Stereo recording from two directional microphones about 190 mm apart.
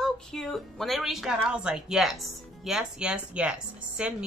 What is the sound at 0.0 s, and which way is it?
A woman's voice, 5° left (ahead or behind).